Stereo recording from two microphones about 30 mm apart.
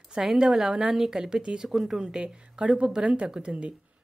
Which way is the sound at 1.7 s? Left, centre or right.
Centre.